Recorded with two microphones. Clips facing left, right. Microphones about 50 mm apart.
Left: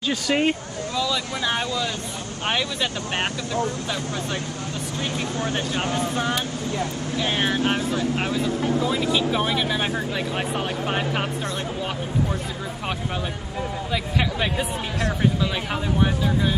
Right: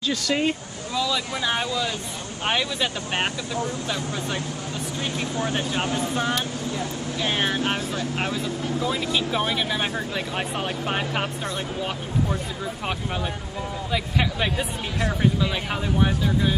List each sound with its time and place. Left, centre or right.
0.1 s speech: left
0.9 s speech: centre
5.4 s speech: centre
13.9 s speech: centre